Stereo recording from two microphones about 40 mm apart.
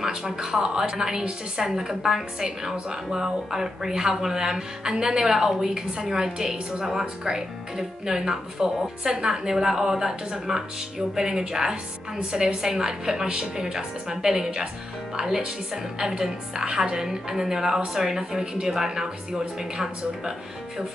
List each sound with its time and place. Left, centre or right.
0.0 s a woman's voice: centre